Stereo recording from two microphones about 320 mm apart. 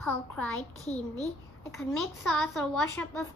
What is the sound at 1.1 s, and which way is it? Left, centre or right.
Speech, centre.